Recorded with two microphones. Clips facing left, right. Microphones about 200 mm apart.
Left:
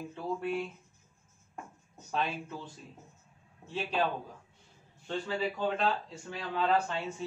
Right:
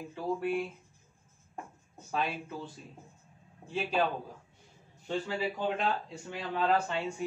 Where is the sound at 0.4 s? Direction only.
5° right (ahead or behind).